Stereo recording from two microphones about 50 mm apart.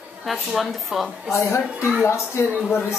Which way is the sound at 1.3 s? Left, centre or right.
Left.